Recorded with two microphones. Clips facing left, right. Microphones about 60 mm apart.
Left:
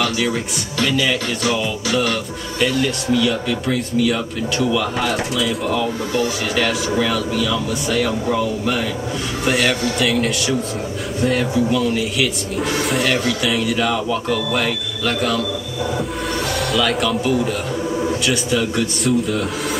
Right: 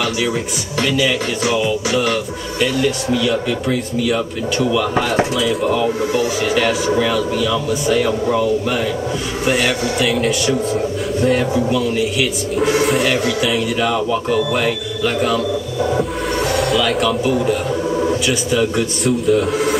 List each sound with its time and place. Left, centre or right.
0.8 s speech: centre
1.4 s music: centre
2.6 s speech: centre
16.5 s speech: centre